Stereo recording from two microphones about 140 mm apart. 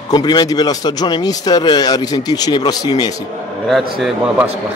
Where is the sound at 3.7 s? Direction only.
Centre (ahead or behind).